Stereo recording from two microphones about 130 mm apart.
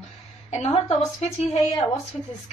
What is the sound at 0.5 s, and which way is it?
Speech, 55° left (ahead or behind).